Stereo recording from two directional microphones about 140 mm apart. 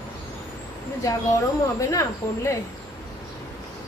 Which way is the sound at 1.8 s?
20° left (ahead or behind).